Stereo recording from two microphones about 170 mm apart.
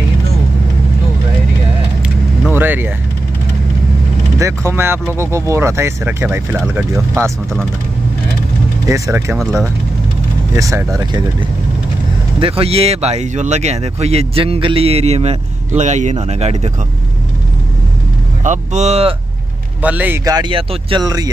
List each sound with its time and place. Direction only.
2.5 s vehicle: 10° right (ahead or behind)
4.4 s speech: 15° right (ahead or behind)
8.8 s speech: 20° right (ahead or behind)
10.5 s speech: 15° right (ahead or behind)
12.4 s speech: 35° right (ahead or behind)
18.4 s speech: 45° right (ahead or behind)
19.8 s speech: 10° right (ahead or behind)
20.2 s speech: 25° right (ahead or behind)